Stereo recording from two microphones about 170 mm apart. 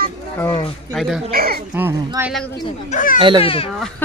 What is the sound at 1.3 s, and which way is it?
Speech, 60° right (ahead or behind).